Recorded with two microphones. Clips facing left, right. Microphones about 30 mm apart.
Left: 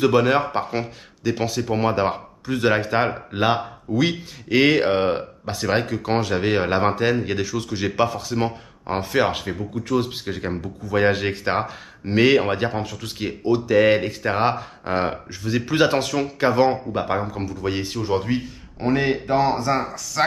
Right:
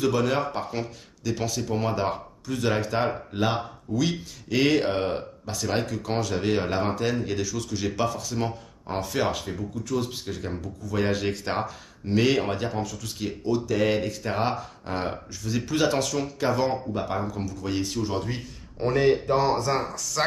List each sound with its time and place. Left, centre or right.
0.0 s speech: left; by 20.2 s centre